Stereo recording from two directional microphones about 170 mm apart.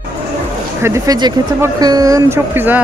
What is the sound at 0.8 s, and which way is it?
Speech, 20° right (ahead or behind).